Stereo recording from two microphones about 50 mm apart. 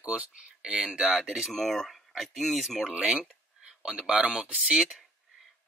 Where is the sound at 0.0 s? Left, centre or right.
Right.